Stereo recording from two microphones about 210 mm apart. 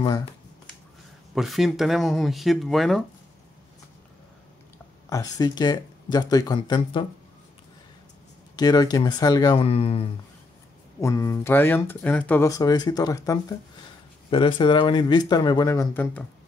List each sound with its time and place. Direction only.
0.0 s speech: 20° left (ahead or behind)
1.3 s speech: centre (ahead or behind)
5.1 s speech: 20° left (ahead or behind)
8.5 s speech: 20° left (ahead or behind)
11.0 s speech: 15° left (ahead or behind)